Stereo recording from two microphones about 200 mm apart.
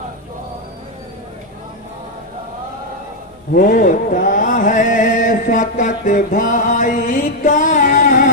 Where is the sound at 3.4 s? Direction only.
45° left (ahead or behind).